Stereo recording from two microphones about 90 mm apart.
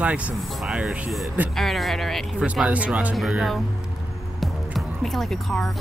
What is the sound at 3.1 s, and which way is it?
Speech, 5° right (ahead or behind).